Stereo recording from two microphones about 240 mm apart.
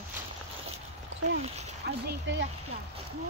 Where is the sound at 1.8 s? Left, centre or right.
Right.